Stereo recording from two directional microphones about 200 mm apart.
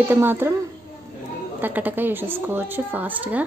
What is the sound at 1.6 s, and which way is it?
Speech, 10° right (ahead or behind).